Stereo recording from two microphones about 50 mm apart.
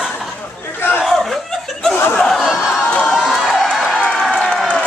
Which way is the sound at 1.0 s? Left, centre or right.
Centre.